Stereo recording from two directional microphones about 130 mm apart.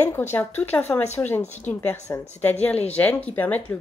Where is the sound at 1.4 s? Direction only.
60° left (ahead or behind).